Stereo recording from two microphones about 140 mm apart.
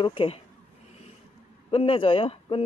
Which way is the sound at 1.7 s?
40° left (ahead or behind).